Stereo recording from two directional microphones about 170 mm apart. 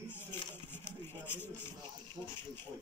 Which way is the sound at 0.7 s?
15° left (ahead or behind).